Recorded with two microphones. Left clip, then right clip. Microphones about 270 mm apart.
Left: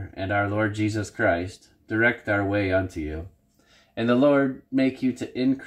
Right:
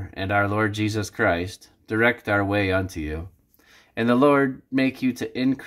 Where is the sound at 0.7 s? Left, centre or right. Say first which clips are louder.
Right 2 dB; right.